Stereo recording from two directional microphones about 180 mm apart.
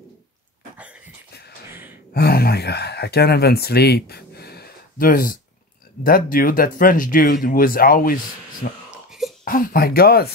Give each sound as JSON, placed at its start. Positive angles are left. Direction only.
{"t": 1.7, "sound": "gasp", "side_deg": -10}
{"t": 2.1, "sound": "speech", "side_deg": 60}